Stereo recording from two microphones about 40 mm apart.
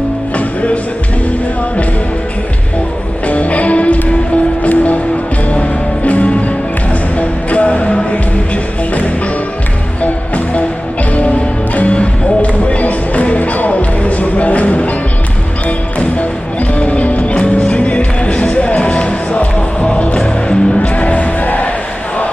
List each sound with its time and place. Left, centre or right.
3.3 s music: left
10.0 s music: left
11.7 s music: left
16.7 s music: left
20.8 s music: left